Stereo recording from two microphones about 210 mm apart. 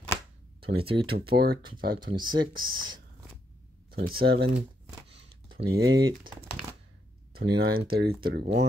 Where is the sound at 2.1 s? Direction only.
20° right (ahead or behind).